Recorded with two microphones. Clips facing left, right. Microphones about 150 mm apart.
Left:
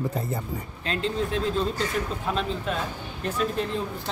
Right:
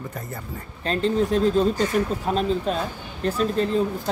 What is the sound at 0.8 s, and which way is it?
Speech, 40° right (ahead or behind).